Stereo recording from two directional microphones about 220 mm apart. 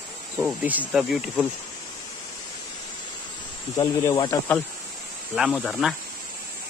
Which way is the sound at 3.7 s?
15° left (ahead or behind).